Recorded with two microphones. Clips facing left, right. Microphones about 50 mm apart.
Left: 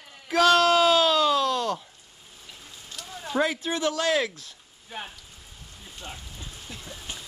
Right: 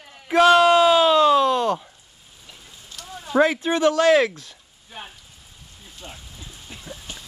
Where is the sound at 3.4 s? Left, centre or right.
Right.